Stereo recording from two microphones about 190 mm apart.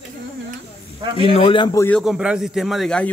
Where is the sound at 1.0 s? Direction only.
25° right (ahead or behind).